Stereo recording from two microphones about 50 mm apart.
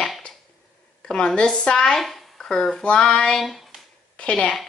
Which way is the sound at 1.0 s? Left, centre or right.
Centre.